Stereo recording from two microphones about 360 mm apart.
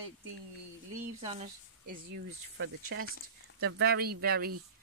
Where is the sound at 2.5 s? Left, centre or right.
Right.